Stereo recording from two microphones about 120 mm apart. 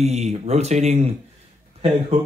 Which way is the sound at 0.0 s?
65° right (ahead or behind).